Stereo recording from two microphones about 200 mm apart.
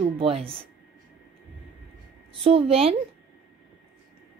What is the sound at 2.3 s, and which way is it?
Speech, 25° right (ahead or behind).